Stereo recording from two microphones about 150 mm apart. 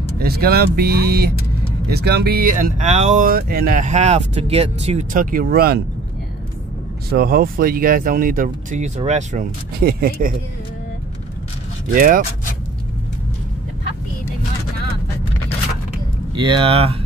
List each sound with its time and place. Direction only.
0.2 s speech: 90° right; by 3.3 s 50° right (ahead or behind)
3.3 s speech: 90° right; by 5.0 s 45° right (ahead or behind)
5.1 s speech: 65° right (ahead or behind); by 5.8 s 90° right
7.1 s speech: 85° right; by 9.5 s 50° right (ahead or behind)
9.8 s speech: 90° right
11.9 s speech: 70° right (ahead or behind)
16.3 s speech: 30° right (ahead or behind)